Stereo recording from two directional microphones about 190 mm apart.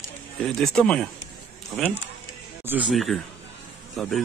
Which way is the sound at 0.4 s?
Centre (ahead or behind).